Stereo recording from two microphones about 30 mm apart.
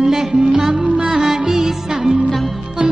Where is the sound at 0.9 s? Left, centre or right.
Right.